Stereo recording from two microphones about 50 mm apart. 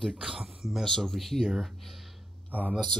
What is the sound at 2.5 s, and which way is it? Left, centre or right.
Speech, right.